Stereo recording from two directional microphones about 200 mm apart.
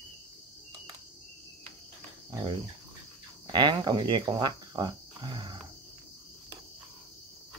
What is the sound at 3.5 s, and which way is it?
Speech, 25° right (ahead or behind).